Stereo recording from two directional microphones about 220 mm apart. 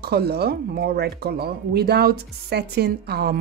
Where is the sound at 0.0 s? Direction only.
45° right (ahead or behind).